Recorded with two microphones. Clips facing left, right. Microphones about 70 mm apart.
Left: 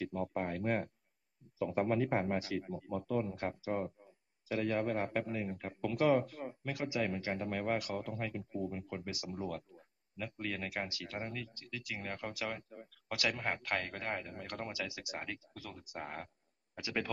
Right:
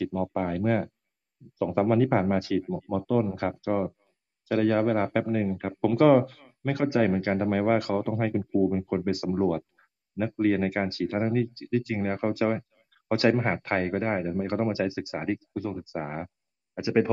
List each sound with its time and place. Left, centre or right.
0.0 s speech: right